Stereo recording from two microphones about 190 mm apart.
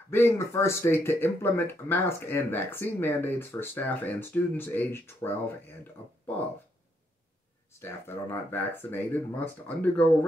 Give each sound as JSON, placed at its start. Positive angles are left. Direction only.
{"t": 0.1, "sound": "speech", "side_deg": 15}
{"t": 7.8, "sound": "speech", "side_deg": 10}